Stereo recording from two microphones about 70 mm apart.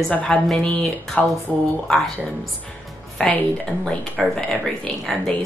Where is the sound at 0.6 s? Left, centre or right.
Centre.